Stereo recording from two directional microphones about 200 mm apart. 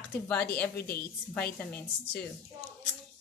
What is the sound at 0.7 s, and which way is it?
Speech, 50° left (ahead or behind).